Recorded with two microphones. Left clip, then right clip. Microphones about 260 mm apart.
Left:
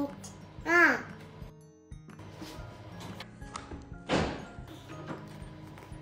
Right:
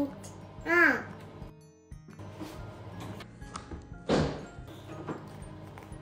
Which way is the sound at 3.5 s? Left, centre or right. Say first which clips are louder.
Left 1 dB; right.